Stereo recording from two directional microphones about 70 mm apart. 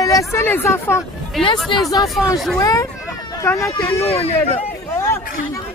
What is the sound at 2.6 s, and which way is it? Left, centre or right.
Speech, left.